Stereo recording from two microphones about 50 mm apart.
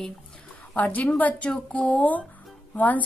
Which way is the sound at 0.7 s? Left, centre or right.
Left.